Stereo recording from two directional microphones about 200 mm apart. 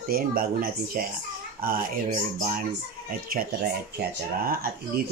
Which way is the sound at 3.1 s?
45° right (ahead or behind).